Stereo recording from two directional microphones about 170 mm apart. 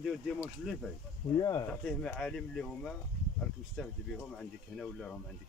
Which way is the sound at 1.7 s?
5° left (ahead or behind).